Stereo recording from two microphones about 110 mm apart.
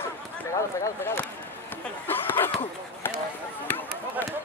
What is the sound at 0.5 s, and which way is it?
Speech, 25° left (ahead or behind).